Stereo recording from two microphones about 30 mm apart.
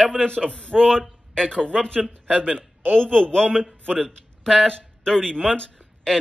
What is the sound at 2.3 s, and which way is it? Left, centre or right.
Speech, right.